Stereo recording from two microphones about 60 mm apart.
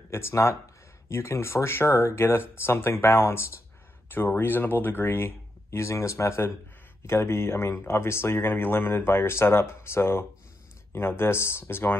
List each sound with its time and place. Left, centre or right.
0.1 s speech: left